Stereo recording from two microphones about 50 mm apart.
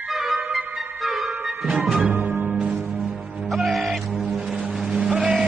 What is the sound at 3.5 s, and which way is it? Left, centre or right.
Music, centre.